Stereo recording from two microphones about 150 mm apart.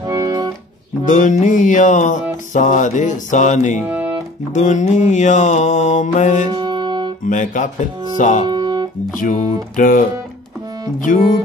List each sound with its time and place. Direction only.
0.1 s music: 25° right (ahead or behind)
1.0 s music: 55° left (ahead or behind)
4.6 s mantra: 55° left (ahead or behind)
6.5 s music: 30° right (ahead or behind)
7.2 s music: 55° left (ahead or behind)
8.5 s music: 30° right (ahead or behind)
9.2 s music: 60° left (ahead or behind)
11.1 s music: 55° left (ahead or behind)